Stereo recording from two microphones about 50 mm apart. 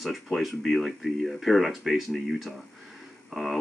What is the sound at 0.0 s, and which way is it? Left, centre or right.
Speech, centre.